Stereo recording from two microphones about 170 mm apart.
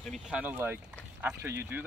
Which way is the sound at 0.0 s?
Centre (ahead or behind).